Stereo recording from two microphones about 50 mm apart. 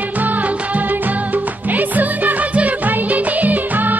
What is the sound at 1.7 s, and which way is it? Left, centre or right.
Music, right.